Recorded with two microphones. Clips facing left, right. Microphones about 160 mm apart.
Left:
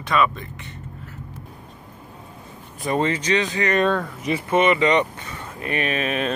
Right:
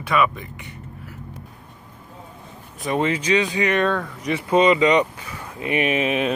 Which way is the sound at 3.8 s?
5° left (ahead or behind).